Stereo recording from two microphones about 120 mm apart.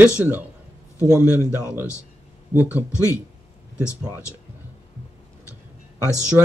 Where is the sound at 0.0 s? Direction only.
10° right (ahead or behind).